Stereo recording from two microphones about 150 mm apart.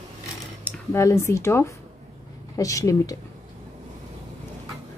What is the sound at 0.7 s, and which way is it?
A woman's voice, 20° left (ahead or behind).